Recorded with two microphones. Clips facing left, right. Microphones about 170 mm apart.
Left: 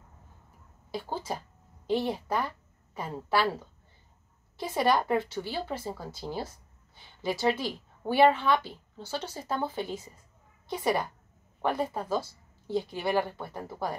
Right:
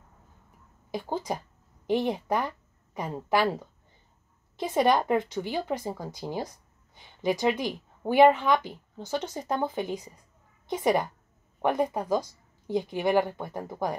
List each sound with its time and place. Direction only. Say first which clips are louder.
0.9 s a woman's voice: right 3 dB; 15° right (ahead or behind)